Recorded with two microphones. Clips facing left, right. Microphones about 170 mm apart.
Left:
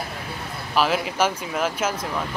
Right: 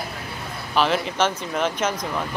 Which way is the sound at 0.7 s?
5° left (ahead or behind).